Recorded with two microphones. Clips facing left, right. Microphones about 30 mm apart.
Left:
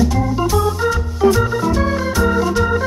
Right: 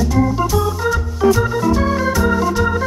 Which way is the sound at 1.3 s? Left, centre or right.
Centre.